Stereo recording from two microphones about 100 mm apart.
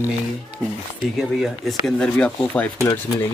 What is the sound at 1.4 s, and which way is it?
Speech, centre (ahead or behind).